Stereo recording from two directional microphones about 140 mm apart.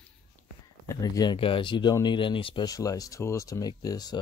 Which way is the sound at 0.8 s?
25° left (ahead or behind).